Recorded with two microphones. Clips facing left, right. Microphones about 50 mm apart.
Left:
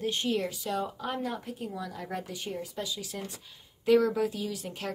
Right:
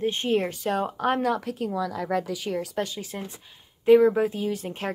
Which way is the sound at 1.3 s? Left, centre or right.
Right.